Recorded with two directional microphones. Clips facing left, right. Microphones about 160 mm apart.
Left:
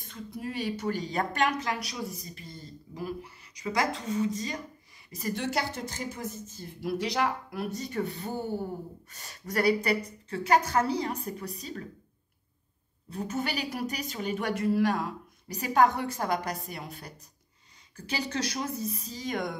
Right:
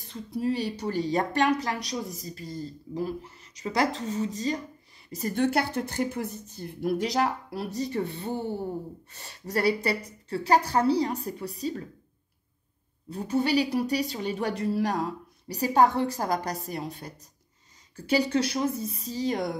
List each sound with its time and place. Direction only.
0.0 s speech: 30° right (ahead or behind)
5.3 s speech: 55° right (ahead or behind); by 11.8 s 35° right (ahead or behind)
13.1 s speech: 35° right (ahead or behind)